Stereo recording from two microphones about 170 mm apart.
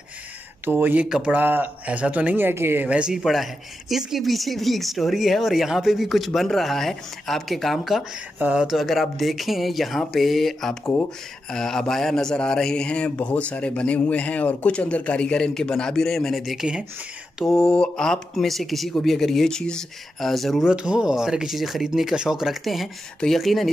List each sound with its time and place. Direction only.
0.7 s speech: 10° right (ahead or behind)